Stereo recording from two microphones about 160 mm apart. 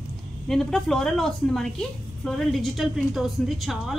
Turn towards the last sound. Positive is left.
turn(degrees=0)  # may be behind; listen again after turning